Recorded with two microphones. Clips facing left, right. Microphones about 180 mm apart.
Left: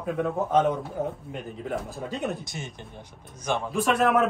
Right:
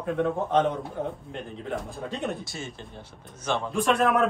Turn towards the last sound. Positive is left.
turn(degrees=0)  # may be behind; listen again after turning